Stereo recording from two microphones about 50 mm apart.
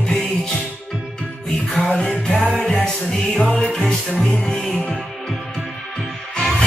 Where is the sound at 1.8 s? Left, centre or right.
Centre.